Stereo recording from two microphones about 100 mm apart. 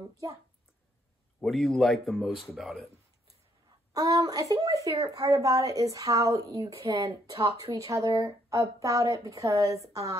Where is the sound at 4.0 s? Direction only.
40° right (ahead or behind).